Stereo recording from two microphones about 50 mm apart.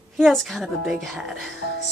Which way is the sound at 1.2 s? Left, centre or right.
Centre.